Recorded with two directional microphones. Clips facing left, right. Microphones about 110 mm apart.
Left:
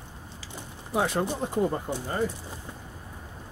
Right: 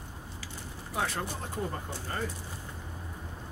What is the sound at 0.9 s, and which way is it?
Speech, 20° left (ahead or behind).